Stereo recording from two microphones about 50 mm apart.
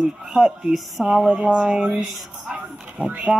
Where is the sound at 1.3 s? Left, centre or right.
Centre.